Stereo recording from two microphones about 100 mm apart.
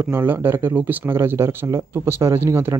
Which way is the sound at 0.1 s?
20° right (ahead or behind).